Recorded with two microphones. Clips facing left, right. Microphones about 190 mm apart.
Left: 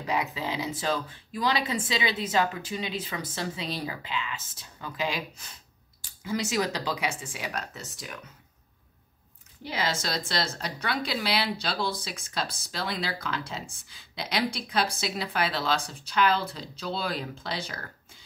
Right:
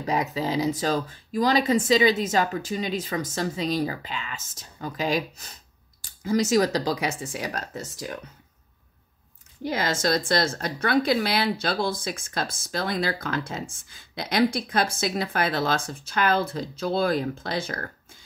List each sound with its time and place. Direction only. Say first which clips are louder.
0.0 s speech: right 4 dB; 40° right (ahead or behind)
9.6 s speech: right 5 dB; 45° right (ahead or behind)